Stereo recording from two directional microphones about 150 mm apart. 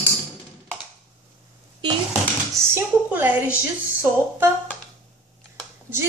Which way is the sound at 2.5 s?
15° right (ahead or behind).